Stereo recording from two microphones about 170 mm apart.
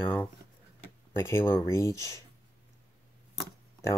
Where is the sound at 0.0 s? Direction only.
10° left (ahead or behind).